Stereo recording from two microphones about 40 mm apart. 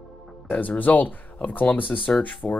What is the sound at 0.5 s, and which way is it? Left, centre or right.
Speech, left.